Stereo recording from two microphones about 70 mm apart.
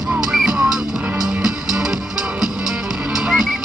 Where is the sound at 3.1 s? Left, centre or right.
Centre.